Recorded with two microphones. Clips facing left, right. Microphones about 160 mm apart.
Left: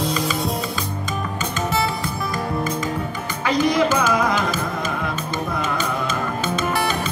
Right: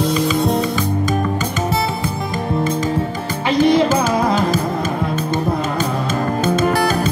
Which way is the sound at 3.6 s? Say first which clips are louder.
Right 5 dB; 30° right (ahead or behind).